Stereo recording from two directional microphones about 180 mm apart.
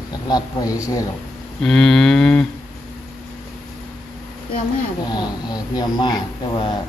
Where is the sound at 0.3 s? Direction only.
20° left (ahead or behind).